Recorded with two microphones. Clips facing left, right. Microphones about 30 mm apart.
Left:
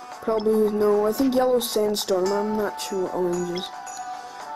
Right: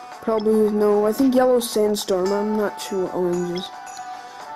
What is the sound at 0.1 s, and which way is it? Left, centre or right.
Speech, centre.